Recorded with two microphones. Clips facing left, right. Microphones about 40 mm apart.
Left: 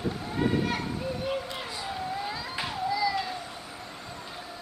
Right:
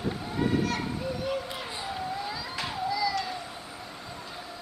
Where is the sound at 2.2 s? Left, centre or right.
Centre.